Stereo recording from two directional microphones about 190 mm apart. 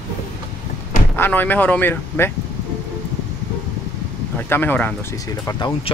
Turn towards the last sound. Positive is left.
turn(degrees=15)  # may be behind; listen again after turning